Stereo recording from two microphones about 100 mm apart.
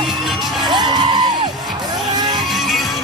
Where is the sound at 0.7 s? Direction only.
45° right (ahead or behind).